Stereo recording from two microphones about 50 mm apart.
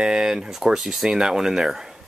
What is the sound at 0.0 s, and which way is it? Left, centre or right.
Speech, centre.